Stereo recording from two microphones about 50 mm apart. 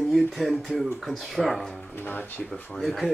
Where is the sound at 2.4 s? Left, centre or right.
Centre.